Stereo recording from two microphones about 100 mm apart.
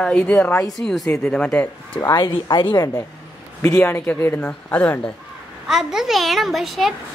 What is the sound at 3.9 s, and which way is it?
Speech, 20° left (ahead or behind).